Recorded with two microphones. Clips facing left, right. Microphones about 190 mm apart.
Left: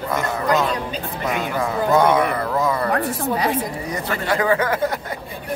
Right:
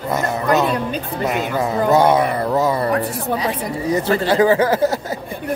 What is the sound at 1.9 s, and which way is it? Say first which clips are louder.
Speech: right 2 dB; 25° right (ahead or behind).